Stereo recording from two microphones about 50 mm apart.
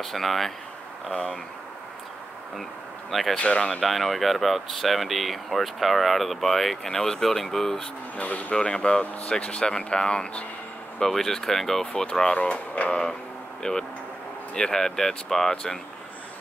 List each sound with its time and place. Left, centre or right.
0.0 s speech: centre
3.1 s speech: centre
3.3 s speech: left
3.8 s speech: centre
8.2 s speech: left
8.5 s speech: centre